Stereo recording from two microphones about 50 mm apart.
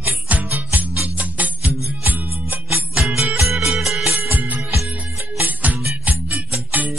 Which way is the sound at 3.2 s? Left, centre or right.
Right.